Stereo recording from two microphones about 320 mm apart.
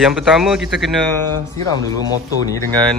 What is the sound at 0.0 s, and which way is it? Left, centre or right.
Speech, centre.